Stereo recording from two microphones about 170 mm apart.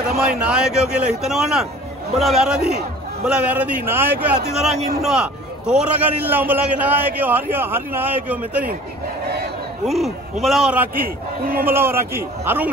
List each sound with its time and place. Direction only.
0.3 s a man's voice: 5° right (ahead or behind)
4.5 s a man's voice: centre (ahead or behind)
9.8 s a man's voice: centre (ahead or behind)
11.4 s a man's voice: 60° right (ahead or behind)
11.7 s a man's voice: 15° right (ahead or behind)